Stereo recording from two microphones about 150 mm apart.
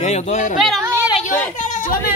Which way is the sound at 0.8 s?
10° right (ahead or behind).